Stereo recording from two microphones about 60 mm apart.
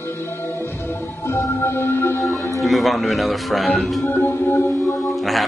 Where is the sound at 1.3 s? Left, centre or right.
Left.